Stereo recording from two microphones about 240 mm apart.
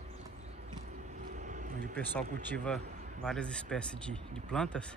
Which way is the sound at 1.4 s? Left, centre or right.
Right.